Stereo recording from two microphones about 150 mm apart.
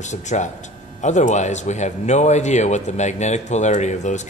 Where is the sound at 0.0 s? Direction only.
50° left (ahead or behind).